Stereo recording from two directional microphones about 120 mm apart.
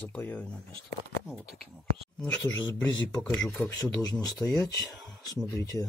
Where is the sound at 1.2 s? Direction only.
10° right (ahead or behind).